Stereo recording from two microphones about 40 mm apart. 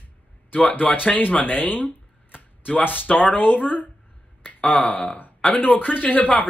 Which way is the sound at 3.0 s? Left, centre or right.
Left.